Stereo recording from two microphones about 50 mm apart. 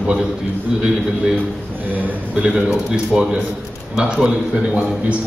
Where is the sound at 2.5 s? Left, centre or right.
Centre.